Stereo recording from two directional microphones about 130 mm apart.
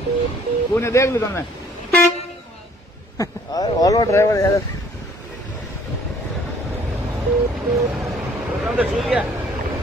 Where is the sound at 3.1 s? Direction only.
30° left (ahead or behind).